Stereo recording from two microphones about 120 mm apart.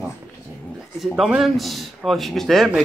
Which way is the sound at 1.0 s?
5° right (ahead or behind).